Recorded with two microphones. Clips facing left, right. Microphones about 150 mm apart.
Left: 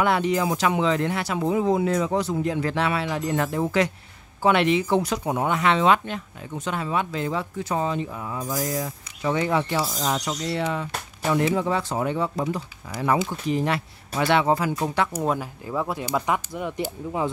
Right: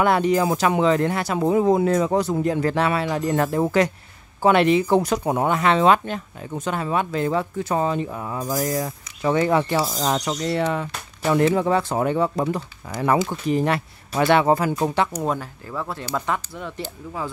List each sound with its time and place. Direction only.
0.0 s speech: 45° right (ahead or behind)
15.1 s speech: 10° left (ahead or behind)